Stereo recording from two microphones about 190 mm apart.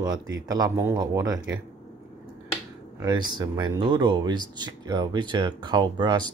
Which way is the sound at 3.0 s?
20° right (ahead or behind).